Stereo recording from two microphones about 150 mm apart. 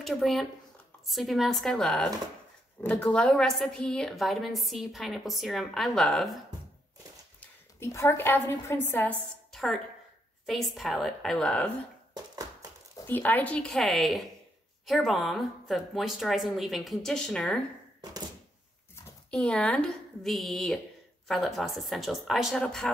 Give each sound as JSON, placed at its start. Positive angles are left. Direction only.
{"t": 0.0, "sound": "a woman's voice", "side_deg": 0}
{"t": 7.3, "sound": "a woman's voice", "side_deg": 15}
{"t": 12.9, "sound": "a woman's voice", "side_deg": 15}
{"t": 19.3, "sound": "a woman's voice", "side_deg": 5}